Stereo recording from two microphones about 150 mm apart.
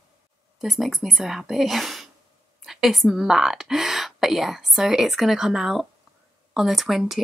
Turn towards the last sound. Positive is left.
turn(degrees=0)  # may be behind; listen again after turning